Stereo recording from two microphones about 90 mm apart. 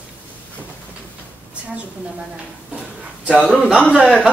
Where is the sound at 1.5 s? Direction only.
10° right (ahead or behind).